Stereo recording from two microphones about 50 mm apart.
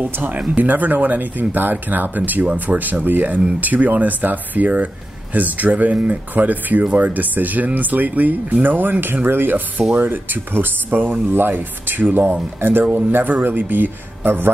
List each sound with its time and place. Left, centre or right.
0.0 s speech: right